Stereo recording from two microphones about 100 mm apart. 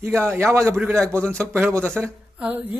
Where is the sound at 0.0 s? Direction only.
25° right (ahead or behind).